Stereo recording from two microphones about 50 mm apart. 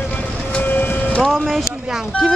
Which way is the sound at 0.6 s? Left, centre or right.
Left.